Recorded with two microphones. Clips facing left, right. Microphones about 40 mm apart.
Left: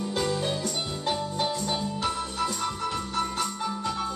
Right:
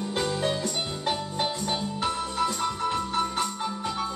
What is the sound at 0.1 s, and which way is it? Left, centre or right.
Music, right.